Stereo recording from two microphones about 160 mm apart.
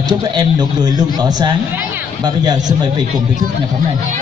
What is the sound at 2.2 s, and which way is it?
Speech, 25° right (ahead or behind).